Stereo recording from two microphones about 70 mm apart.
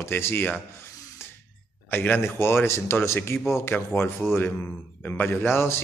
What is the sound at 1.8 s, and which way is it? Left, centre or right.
Speech, left.